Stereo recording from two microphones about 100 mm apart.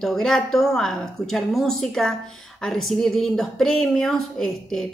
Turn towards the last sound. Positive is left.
turn(degrees=5)  # may be behind; listen again after turning